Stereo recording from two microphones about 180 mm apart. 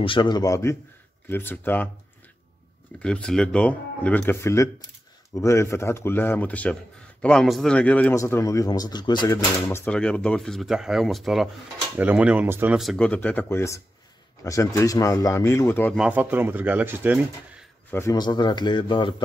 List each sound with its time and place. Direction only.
0.0 s a man's voice: 25° left (ahead or behind); by 1.9 s 10° left (ahead or behind)
3.0 s a man's voice: 5° left (ahead or behind); by 9.4 s 25° left (ahead or behind)
9.7 s speech: 10° left (ahead or behind); by 12.7 s 10° right (ahead or behind)
12.7 s a man's voice: centre (ahead or behind)
16.0 s speech: 10° right (ahead or behind)
17.9 s speech: 20° left (ahead or behind)